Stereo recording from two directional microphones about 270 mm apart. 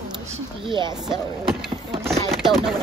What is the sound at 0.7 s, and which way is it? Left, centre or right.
Speech, centre.